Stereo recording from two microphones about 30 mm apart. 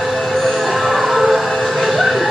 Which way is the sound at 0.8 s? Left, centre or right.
Centre.